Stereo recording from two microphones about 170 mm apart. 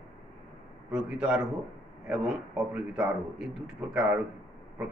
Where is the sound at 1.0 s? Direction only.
5° right (ahead or behind).